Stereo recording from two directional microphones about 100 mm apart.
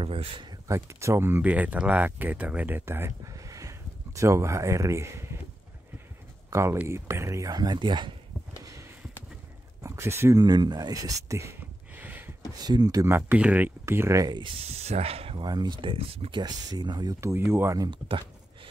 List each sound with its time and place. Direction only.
0.0 s speech: 65° right (ahead or behind)
0.7 s speech: 30° right (ahead or behind)
6.5 s speech: 25° right (ahead or behind)
7.5 s speech: 45° right (ahead or behind)
9.8 s speech: 25° right (ahead or behind)
10.4 s speech: 45° right (ahead or behind)
11.9 s a sound: 15° right (ahead or behind)
12.5 s speech: 45° right (ahead or behind)
13.0 s speech: 25° right (ahead or behind)
14.6 s speech: 90° right
15.4 s speech: 45° right (ahead or behind); by 16.3 s 65° right (ahead or behind)
16.3 s speech: 40° right (ahead or behind)
17.2 s speech: 25° right (ahead or behind)